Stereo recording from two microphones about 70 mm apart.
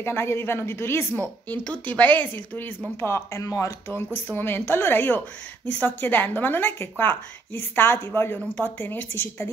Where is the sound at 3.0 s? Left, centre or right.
Left.